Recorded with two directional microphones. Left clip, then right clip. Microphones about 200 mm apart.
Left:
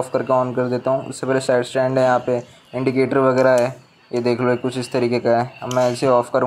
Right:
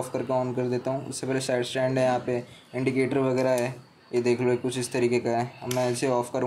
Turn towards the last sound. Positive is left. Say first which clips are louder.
# left 9 dB
turn(degrees=20)  # may be behind; listen again after turning